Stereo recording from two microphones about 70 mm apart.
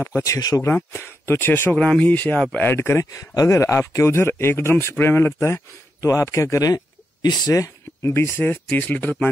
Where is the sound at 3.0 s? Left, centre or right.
Left.